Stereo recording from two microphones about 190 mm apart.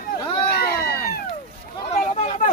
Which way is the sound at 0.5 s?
55° left (ahead or behind).